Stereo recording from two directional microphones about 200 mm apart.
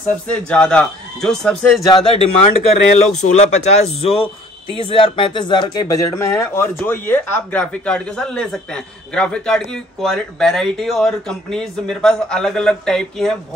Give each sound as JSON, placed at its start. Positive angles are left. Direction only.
{"t": 0.3, "sound": "speech", "side_deg": 5}
{"t": 1.9, "sound": "speech", "side_deg": 20}
{"t": 2.4, "sound": "speech", "side_deg": 35}